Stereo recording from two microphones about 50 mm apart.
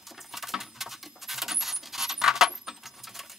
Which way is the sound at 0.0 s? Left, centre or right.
Centre.